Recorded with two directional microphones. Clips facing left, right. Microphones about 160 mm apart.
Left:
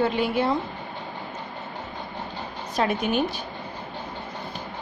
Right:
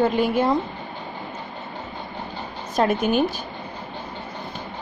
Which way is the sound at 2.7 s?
45° right (ahead or behind).